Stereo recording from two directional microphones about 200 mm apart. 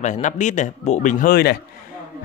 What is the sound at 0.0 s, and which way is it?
Speech, 35° left (ahead or behind).